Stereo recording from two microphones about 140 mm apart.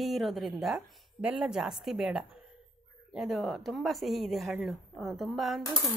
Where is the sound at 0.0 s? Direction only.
Centre (ahead or behind).